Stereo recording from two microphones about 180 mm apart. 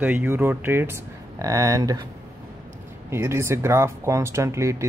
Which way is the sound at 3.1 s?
15° right (ahead or behind).